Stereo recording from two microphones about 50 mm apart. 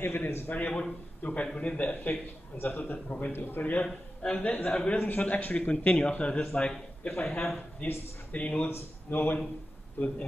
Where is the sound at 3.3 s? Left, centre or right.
Left.